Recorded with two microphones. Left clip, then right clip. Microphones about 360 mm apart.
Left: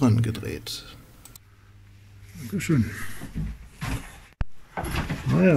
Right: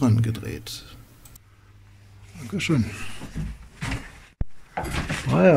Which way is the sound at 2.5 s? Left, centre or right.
Centre.